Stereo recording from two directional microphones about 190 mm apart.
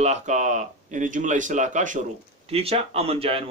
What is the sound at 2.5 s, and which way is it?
Speech, 30° right (ahead or behind).